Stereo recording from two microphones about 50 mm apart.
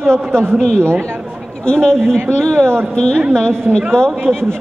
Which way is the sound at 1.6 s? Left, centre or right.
Centre.